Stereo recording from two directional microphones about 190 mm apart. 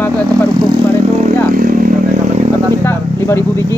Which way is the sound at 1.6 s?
45° right (ahead or behind).